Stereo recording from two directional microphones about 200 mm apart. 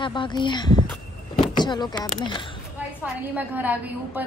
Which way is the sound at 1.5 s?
20° left (ahead or behind).